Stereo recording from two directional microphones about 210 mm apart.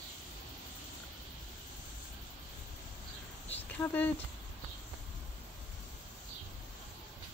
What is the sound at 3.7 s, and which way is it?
Speech, 10° left (ahead or behind).